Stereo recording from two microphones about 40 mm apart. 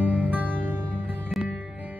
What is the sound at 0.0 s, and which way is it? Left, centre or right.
Music, right.